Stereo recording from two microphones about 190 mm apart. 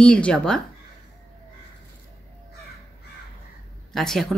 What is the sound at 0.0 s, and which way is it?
Speech, 5° left (ahead or behind).